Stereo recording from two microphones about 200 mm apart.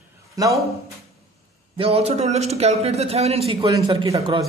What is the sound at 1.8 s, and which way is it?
A man's voice, 30° right (ahead or behind).